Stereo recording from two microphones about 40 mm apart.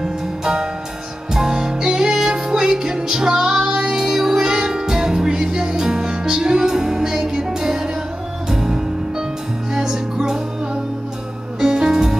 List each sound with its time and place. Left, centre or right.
0.0 s music: centre